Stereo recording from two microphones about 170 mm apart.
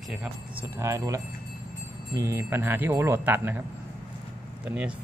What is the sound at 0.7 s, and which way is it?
Wind chime, 15° right (ahead or behind).